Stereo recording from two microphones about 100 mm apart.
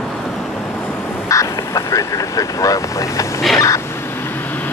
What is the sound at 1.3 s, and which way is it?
Vehicle, 30° left (ahead or behind).